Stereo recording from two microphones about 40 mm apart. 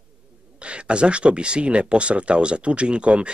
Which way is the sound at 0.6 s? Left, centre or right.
Right.